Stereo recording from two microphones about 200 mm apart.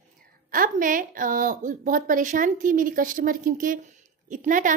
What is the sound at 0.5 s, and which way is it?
A woman's voice, 40° right (ahead or behind).